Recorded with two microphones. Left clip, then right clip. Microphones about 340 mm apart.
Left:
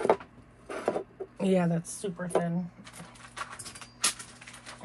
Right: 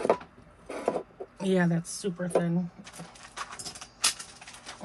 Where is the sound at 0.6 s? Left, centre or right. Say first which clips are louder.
Right 1 dB; centre.